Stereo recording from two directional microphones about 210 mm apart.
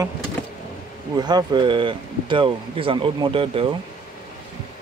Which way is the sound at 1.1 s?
20° right (ahead or behind).